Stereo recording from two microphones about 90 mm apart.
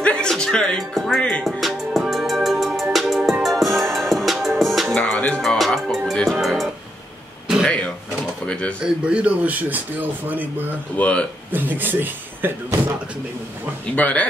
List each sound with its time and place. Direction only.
0.0 s speech: 10° left (ahead or behind)
1.4 s music: centre (ahead or behind)
4.9 s music: 10° left (ahead or behind)
5.6 s music: centre (ahead or behind)
7.6 s speech: 15° left (ahead or behind)
8.8 s speech: 15° right (ahead or behind)
11.0 s speech: 15° left (ahead or behind)
11.5 s a man's voice: 20° right (ahead or behind)
13.9 s speech: 15° left (ahead or behind)